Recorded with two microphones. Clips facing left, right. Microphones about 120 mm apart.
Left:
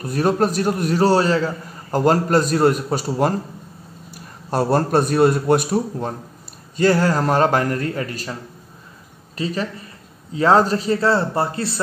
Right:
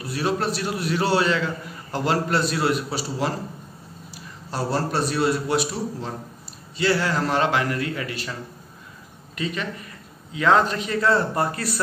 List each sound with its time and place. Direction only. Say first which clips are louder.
0.0 s a man's voice: left 6 dB; 45° left (ahead or behind)
9.4 s a man's voice: left 4 dB; 35° left (ahead or behind)